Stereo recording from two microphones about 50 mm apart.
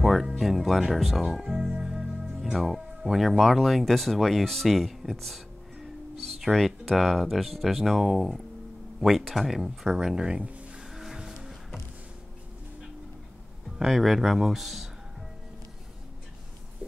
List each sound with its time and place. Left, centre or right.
0.0 s music: centre
2.4 s speech: centre; by 10.7 s right
10.8 s music: centre
13.8 s speech: centre